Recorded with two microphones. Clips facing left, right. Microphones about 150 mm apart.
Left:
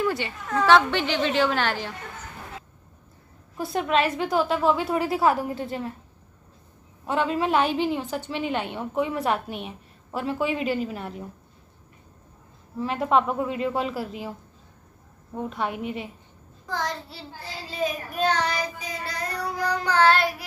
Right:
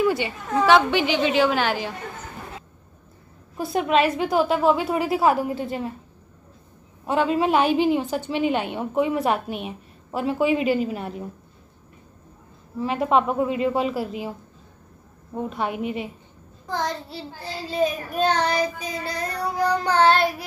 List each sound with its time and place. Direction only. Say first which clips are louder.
0.0 s a sound: right 4 dB; 5° right (ahead or behind)
0.6 s a woman's voice: right 2 dB; 10° right (ahead or behind)
3.5 s a woman's voice: right 3 dB; 10° right (ahead or behind)
7.1 s a woman's voice: right 3 dB; 15° right (ahead or behind)
12.8 s a woman's voice: right 2 dB; 10° right (ahead or behind)
15.3 s a woman's voice: right 2 dB; 10° right (ahead or behind)
16.6 s child singing: right 3 dB; 25° right (ahead or behind)